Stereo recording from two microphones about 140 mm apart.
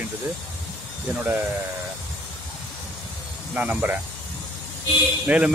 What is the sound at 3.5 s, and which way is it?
Speech, 10° right (ahead or behind).